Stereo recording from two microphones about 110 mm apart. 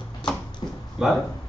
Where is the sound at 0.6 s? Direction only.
35° left (ahead or behind).